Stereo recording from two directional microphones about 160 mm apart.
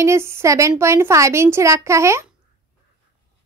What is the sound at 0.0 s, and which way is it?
A woman's voice, 15° right (ahead or behind).